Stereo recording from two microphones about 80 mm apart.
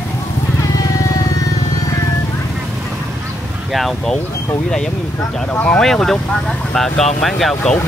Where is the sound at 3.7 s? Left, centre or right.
Centre.